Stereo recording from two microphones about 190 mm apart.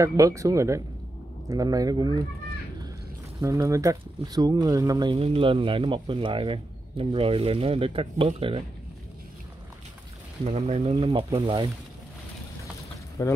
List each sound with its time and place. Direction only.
0.0 s speech: 15° right (ahead or behind)
3.3 s speech: 15° right (ahead or behind)
10.4 s speech: 30° right (ahead or behind)
13.2 s speech: 15° left (ahead or behind)